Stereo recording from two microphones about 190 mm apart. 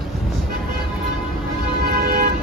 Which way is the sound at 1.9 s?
50° right (ahead or behind).